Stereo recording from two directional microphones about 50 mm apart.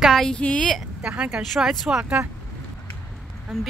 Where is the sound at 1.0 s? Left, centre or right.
Right.